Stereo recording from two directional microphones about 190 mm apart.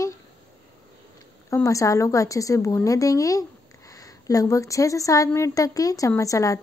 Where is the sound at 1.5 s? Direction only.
15° left (ahead or behind).